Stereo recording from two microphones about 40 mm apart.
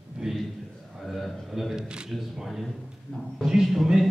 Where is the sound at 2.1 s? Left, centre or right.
Centre.